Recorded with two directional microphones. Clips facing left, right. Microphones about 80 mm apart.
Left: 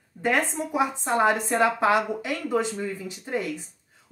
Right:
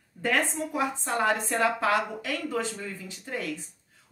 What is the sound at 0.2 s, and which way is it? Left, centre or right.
Speech, centre.